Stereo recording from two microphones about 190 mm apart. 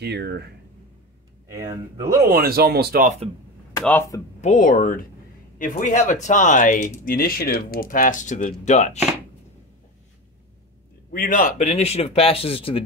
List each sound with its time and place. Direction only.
0.0 s speech: 60° right (ahead or behind)
2.2 s speech: 50° right (ahead or behind)
4.4 s speech: 40° left (ahead or behind)
11.1 s speech: 45° left (ahead or behind); by 12.8 s 30° left (ahead or behind)